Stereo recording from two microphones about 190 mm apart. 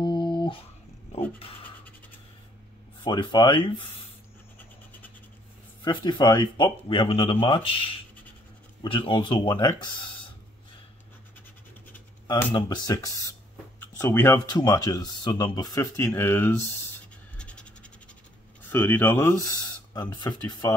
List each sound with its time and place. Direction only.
0.0 s a sound: 25° left (ahead or behind)
3.0 s speech: 25° left (ahead or behind)
5.9 s speech: 25° left (ahead or behind)
12.5 s speech: 20° left (ahead or behind)
13.7 s speech: 10° left (ahead or behind)
17.4 s scratch: 5° left (ahead or behind)
18.7 s speech: 10° left (ahead or behind)